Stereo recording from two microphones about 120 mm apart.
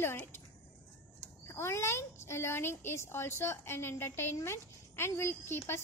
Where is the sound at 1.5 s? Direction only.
20° left (ahead or behind).